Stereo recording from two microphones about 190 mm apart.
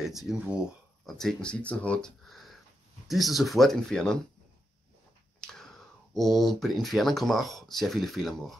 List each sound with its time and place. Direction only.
0.0 s speech: centre (ahead or behind)
5.4 s speech: 5° left (ahead or behind)